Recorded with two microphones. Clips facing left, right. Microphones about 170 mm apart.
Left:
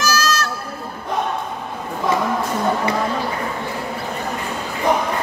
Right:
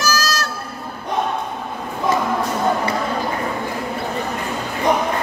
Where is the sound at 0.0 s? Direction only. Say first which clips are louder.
Left 1 dB; 40° right (ahead or behind).